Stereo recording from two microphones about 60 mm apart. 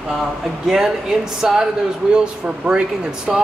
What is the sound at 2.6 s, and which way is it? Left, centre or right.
Speech, centre.